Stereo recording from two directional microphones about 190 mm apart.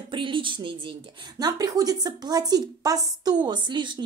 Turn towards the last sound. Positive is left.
turn(degrees=-25)  # may be behind; listen again after turning